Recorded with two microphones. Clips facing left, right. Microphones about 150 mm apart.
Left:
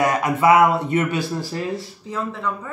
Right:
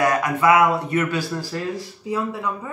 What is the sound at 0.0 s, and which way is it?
Speech, 25° left (ahead or behind).